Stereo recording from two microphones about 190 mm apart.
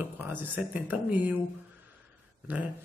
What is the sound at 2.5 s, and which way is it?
Speech, 10° right (ahead or behind).